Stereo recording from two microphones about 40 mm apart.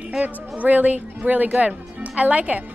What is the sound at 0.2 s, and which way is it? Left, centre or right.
Speech, right.